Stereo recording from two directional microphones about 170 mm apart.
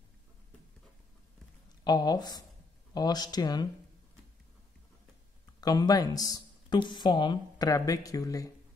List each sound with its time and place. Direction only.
1.9 s speech: 25° left (ahead or behind)
5.6 s speech: 20° left (ahead or behind)